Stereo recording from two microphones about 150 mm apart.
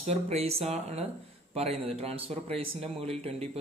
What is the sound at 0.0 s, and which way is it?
A man's voice, 45° right (ahead or behind).